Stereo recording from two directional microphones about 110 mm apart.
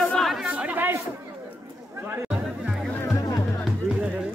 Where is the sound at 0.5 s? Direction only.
15° right (ahead or behind).